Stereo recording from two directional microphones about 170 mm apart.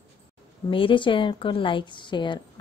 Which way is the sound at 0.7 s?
30° left (ahead or behind).